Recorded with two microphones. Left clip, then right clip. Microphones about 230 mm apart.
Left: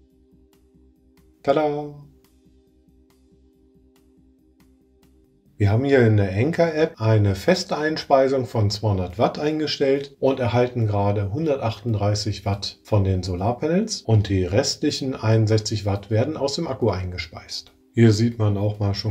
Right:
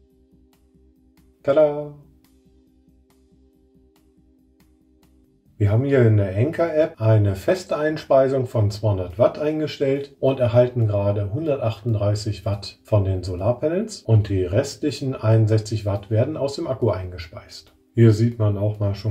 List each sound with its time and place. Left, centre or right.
1.4 s speech: left
5.6 s speech: left